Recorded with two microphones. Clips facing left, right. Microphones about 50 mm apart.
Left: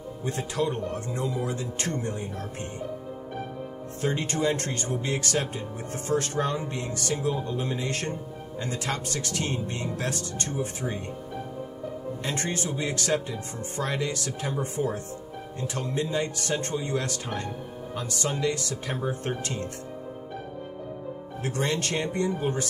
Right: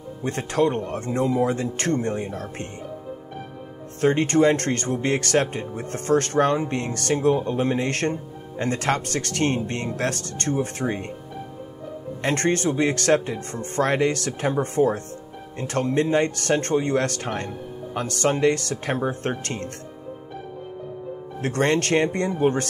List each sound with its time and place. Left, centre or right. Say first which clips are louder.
0.2 s speech: right 7 dB; right
4.0 s speech: right 9 dB; right
12.2 s speech: right 10 dB; right
21.4 s speech: right 7 dB; right